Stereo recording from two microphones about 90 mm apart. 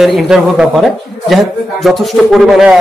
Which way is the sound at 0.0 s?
5° right (ahead or behind).